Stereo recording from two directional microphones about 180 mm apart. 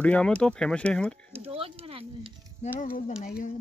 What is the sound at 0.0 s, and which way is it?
Speech, 5° left (ahead or behind).